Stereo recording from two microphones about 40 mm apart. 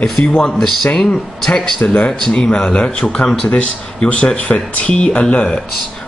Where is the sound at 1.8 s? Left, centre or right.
Left.